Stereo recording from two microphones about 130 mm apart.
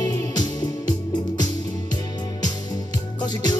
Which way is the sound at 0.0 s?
25° left (ahead or behind).